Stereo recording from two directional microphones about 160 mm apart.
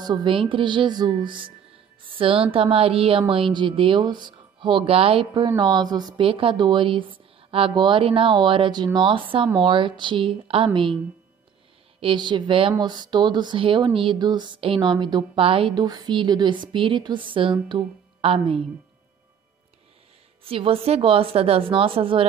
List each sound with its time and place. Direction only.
0.0 s a woman's voice: 25° right (ahead or behind)
12.0 s speech: 30° right (ahead or behind)
20.4 s a woman's voice: 35° right (ahead or behind)